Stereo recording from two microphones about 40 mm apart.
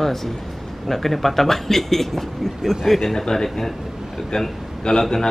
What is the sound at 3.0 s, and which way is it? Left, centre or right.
Speech, centre.